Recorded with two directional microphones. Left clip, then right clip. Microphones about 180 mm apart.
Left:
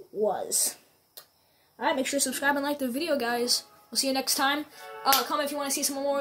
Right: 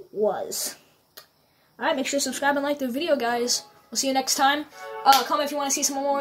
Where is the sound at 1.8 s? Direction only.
Centre (ahead or behind).